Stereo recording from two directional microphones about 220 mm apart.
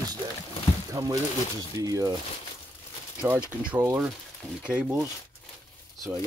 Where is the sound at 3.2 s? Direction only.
5° right (ahead or behind).